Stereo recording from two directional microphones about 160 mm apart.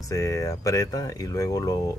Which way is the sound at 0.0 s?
20° left (ahead or behind).